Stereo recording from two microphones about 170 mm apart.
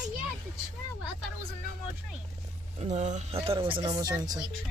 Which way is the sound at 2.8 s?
45° right (ahead or behind).